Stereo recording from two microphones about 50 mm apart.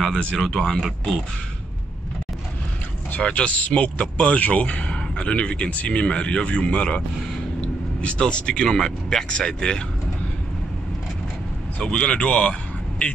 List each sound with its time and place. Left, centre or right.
0.2 s speech: centre
3.2 s speech: left
8.0 s speech: left
11.8 s speech: centre